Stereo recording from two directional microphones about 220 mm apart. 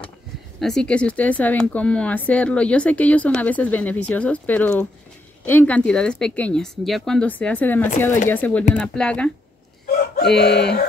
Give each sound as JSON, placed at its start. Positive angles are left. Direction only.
{"t": 0.6, "sound": "speech", "side_deg": 0}
{"t": 10.3, "sound": "speech", "side_deg": 50}